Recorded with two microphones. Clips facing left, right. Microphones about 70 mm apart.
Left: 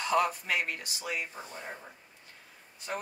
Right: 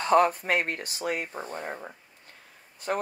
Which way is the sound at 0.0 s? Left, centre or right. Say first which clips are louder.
Right 7 dB; right.